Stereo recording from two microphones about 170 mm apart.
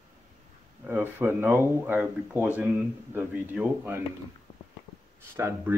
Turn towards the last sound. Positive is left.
turn(degrees=-15)  # may be behind; listen again after turning